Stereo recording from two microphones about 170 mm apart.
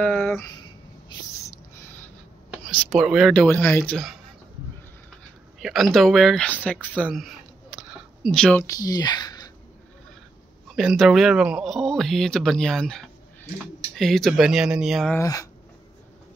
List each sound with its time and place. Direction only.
0.0 s a sound: 10° left (ahead or behind)
0.5 s a sound: 25° left (ahead or behind)
2.6 s speech: 5° left (ahead or behind)
5.6 s speech: centre (ahead or behind)
8.6 s speech: 20° left (ahead or behind)
10.8 s speech: centre (ahead or behind)
15.1 s speech: 20° left (ahead or behind)